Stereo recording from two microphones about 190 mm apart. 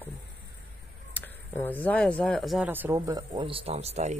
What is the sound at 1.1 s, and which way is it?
Speech, 10° left (ahead or behind).